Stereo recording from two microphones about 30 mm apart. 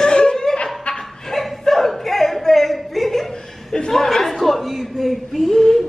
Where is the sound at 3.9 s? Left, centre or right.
Centre.